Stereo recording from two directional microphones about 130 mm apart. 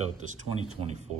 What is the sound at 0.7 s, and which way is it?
Speech, 60° right (ahead or behind).